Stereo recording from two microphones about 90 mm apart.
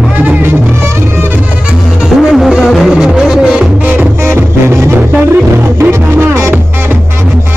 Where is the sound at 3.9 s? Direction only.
20° right (ahead or behind).